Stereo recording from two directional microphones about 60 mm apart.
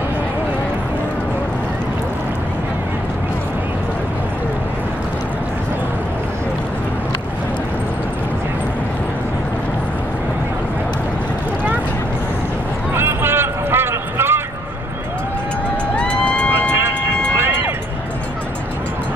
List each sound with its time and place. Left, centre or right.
12.9 s a sound: right
16.0 s vehicle: centre
16.7 s vehicle: right
17.3 s music: right